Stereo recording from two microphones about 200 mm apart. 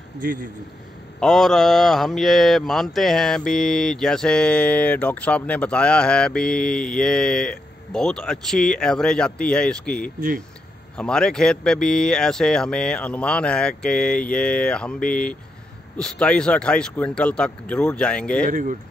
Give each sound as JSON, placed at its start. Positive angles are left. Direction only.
{"t": 0.2, "sound": "a man's voice", "side_deg": -45}
{"t": 1.2, "sound": "speech", "side_deg": 0}
{"t": 18.5, "sound": "speech", "side_deg": -40}